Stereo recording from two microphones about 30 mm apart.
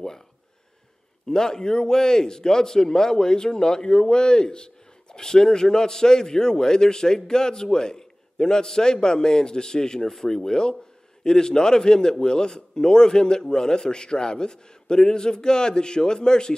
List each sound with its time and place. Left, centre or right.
1.3 s a man's voice: left